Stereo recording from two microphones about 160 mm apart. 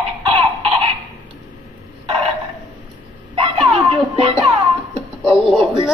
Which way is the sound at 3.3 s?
35° right (ahead or behind).